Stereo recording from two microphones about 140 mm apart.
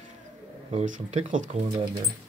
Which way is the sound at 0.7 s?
60° right (ahead or behind).